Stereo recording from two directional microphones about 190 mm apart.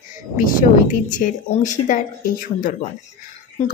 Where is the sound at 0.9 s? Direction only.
45° left (ahead or behind).